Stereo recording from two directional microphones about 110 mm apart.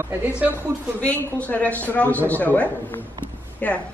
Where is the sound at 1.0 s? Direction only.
20° left (ahead or behind).